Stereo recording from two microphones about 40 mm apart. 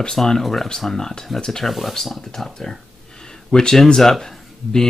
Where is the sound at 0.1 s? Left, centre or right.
Centre.